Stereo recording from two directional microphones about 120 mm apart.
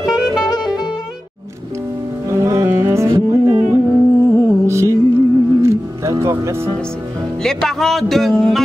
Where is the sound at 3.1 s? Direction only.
40° right (ahead or behind).